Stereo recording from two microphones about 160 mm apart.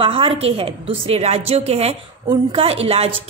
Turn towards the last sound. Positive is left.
turn(degrees=-40)  # may be behind; listen again after turning